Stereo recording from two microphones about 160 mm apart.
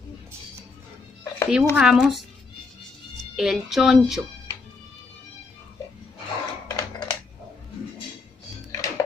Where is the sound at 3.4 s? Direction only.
Centre (ahead or behind).